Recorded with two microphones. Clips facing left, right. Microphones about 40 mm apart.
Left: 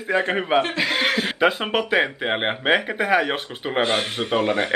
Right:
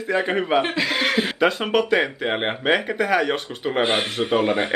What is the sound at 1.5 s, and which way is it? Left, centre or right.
Speech, centre.